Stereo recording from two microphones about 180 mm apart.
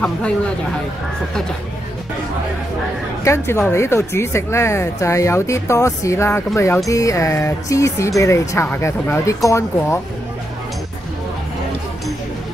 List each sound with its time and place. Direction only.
3.3 s speech: 15° left (ahead or behind)